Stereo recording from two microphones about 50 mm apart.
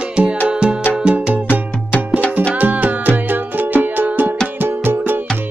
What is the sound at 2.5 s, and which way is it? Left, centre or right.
Music, right.